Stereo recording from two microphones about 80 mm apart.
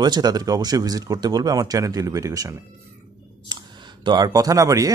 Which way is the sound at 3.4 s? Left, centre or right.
Right.